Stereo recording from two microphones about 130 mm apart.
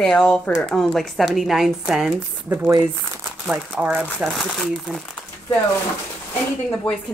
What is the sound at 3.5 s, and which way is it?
Speech, 5° right (ahead or behind).